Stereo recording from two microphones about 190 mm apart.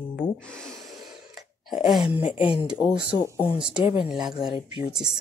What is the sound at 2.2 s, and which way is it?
Speech, 25° left (ahead or behind).